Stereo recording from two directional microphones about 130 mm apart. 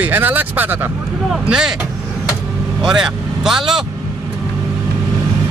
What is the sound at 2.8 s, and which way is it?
Speech, 5° right (ahead or behind).